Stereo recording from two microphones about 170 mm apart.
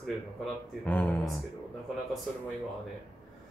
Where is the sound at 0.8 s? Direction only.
10° left (ahead or behind).